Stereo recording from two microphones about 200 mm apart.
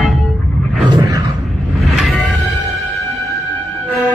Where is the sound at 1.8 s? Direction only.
Centre (ahead or behind).